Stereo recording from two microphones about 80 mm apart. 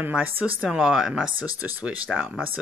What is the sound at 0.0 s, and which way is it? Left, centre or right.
Speech, right.